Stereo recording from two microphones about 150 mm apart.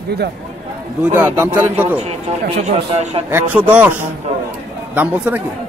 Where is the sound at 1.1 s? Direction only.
15° right (ahead or behind).